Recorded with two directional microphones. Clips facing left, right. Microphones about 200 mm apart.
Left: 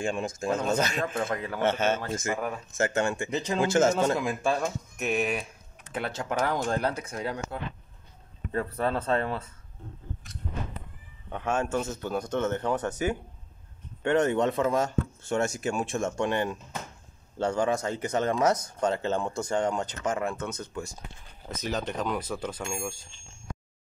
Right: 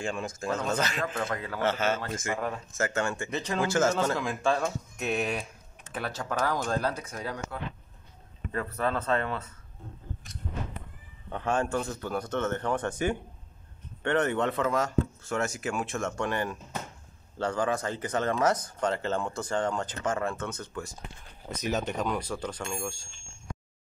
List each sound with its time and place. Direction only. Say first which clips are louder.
0.0 s a man's voice: left 3 dB; 25° left (ahead or behind)
2.3 s speech: left 1 dB; 5° left (ahead or behind)
2.8 s a man's voice: left 3 dB; 20° left (ahead or behind); by 5.4 s 5° left (ahead or behind)
5.9 s a man's voice: left 2 dB; 20° left (ahead or behind)
8.5 s speech: left 2 dB; 30° left (ahead or behind)
11.3 s speech: even; 10° left (ahead or behind)
11.9 s a man's voice: left 1 dB; 20° left (ahead or behind)
12.2 s speech: left 2 dB; 10° left (ahead or behind)
14.0 s speech: left 3 dB; 15° left (ahead or behind)
14.5 s a man's voice: left 1 dB; 25° left (ahead or behind)
21.7 s speech: even; centre (ahead or behind)